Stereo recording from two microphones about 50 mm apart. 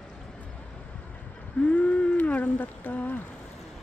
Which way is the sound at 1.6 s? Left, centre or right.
Left.